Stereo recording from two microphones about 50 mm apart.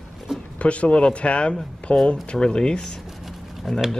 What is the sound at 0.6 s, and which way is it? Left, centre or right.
Speech, left.